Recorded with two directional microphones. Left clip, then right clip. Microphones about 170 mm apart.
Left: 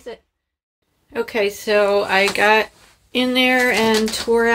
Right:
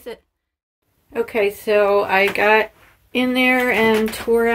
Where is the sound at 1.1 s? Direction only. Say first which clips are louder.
Right 1 dB; 5° right (ahead or behind).